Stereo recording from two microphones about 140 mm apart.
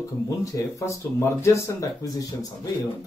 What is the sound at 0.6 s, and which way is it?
A man's voice, 20° left (ahead or behind).